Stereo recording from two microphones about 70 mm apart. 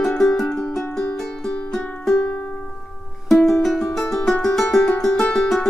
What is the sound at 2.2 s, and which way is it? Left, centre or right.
Music, left.